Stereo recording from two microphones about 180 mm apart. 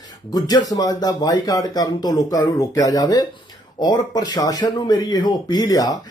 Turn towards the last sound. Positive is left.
turn(degrees=20)  # may be behind; listen again after turning